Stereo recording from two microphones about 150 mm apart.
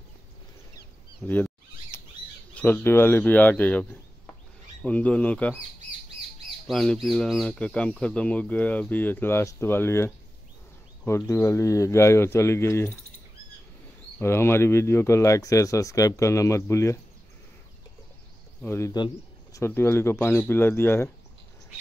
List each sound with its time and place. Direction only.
0.7 s a sound: 10° left (ahead or behind)
2.5 s speech: 10° left (ahead or behind)
6.7 s speech: centre (ahead or behind); by 12.9 s 15° left (ahead or behind)
14.1 s speech: 15° left (ahead or behind)
18.6 s speech: 15° left (ahead or behind)